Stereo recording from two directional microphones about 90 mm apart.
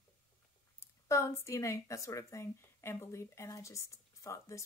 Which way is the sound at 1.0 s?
35° left (ahead or behind).